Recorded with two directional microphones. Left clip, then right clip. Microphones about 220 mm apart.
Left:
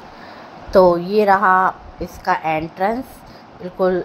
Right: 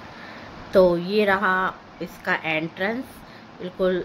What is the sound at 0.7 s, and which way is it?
A woman's voice, 10° right (ahead or behind).